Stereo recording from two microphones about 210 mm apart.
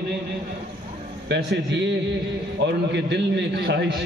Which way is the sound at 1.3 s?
55° right (ahead or behind).